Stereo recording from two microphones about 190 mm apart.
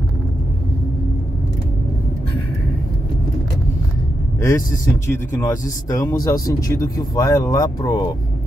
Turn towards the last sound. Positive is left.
turn(degrees=20)  # may be behind; listen again after turning